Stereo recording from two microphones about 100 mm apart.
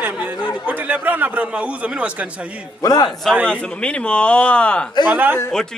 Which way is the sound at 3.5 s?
10° left (ahead or behind).